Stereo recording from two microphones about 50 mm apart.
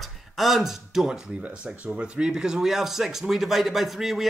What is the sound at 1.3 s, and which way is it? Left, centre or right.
Speech, right.